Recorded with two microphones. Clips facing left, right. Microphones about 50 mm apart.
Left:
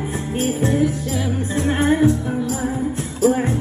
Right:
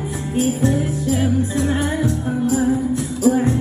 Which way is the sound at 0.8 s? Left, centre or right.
Right.